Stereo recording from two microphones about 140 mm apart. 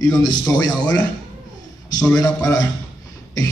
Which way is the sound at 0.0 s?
30° left (ahead or behind).